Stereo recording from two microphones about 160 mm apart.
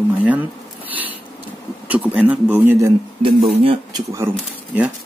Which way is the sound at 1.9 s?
10° right (ahead or behind).